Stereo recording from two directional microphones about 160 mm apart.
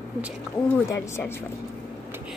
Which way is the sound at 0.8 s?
15° left (ahead or behind).